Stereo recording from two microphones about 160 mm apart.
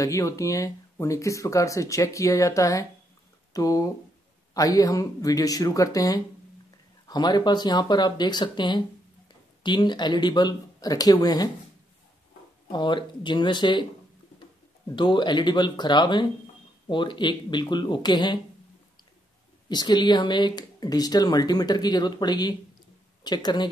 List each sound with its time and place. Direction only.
0.0 s speech: 20° left (ahead or behind)
12.7 s speech: 30° left (ahead or behind)
15.0 s speech: 30° left (ahead or behind)
19.7 s speech: 25° left (ahead or behind)